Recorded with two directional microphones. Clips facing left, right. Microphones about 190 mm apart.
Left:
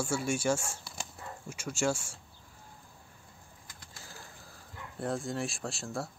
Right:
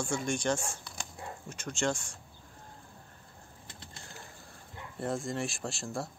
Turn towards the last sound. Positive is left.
turn(degrees=0)  # may be behind; listen again after turning